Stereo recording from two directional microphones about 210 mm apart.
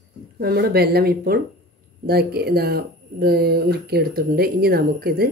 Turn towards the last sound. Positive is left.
turn(degrees=-45)  # may be behind; listen again after turning